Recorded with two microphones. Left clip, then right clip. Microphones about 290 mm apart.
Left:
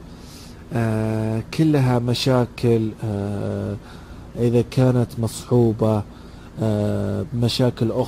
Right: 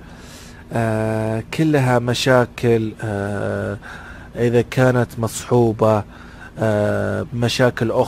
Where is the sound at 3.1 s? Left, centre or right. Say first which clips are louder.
Right 5 dB; right.